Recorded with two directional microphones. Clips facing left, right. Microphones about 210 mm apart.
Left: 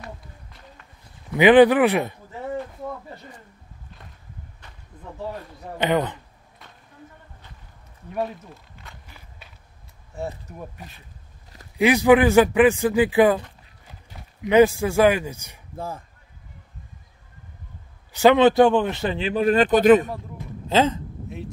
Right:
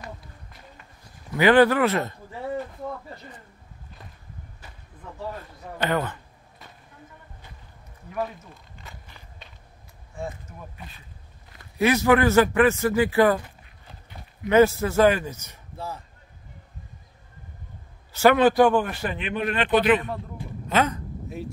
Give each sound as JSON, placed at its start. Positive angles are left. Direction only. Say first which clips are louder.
{"t": 1.3, "sound": "speech", "louder": "left 4 dB", "side_deg": 15}
{"t": 5.8, "sound": "speech", "louder": "left 4 dB", "side_deg": 20}
{"t": 9.0, "sound": "biting", "louder": "even", "side_deg": 10}
{"t": 10.1, "sound": "speech", "louder": "left 3 dB", "side_deg": 40}
{"t": 11.8, "sound": "speech", "louder": "left 3 dB", "side_deg": 15}
{"t": 14.4, "sound": "speech", "louder": "left 2 dB", "side_deg": 15}
{"t": 18.1, "sound": "speech", "louder": "left 3 dB", "side_deg": 20}
{"t": 20.6, "sound": "speech", "louder": "left 4 dB", "side_deg": 25}